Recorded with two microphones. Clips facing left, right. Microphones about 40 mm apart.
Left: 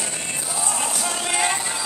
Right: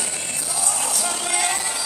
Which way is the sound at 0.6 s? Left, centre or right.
Centre.